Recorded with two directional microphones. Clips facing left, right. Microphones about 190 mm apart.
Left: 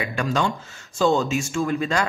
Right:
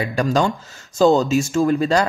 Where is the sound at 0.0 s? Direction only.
40° right (ahead or behind).